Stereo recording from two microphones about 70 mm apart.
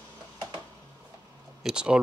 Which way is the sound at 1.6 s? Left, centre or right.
Centre.